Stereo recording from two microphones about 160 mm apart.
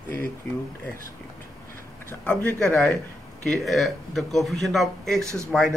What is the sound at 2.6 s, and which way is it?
Speech, centre (ahead or behind).